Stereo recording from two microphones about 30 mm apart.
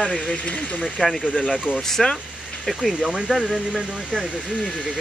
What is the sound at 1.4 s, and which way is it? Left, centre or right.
Speech, centre.